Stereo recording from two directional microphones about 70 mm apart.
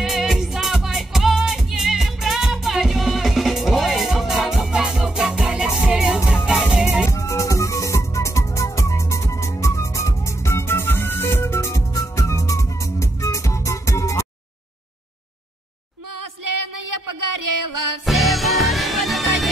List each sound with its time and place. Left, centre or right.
0.0 s music: centre
7.1 s music: left
11.9 s music: left
18.0 s music: centre